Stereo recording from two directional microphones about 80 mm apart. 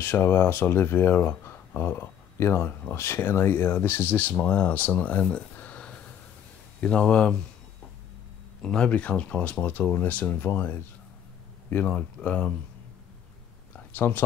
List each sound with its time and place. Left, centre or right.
0.0 s speech: left; by 7.3 s centre
8.6 s speech: centre
13.7 s a sound: left